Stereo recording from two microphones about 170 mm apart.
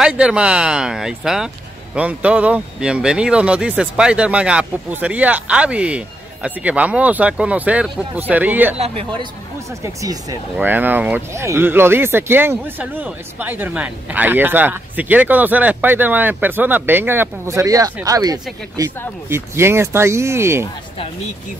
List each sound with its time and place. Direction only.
0.0 s speech: 5° right (ahead or behind)
8.7 s speech: 35° right (ahead or behind)
10.6 s speech: 10° right (ahead or behind)